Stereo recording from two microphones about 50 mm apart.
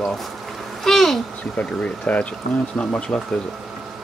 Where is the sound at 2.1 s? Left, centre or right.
Left.